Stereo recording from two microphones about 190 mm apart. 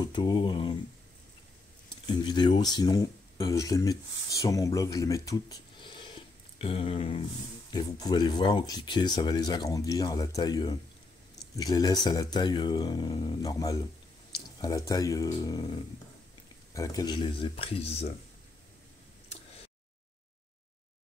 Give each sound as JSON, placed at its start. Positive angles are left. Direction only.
{"t": 0.0, "sound": "speech", "side_deg": 20}
{"t": 1.9, "sound": "speech", "side_deg": 25}
{"t": 16.7, "sound": "speech", "side_deg": 20}